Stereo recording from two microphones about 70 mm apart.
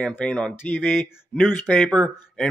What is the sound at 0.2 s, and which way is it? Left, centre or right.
Speech, centre.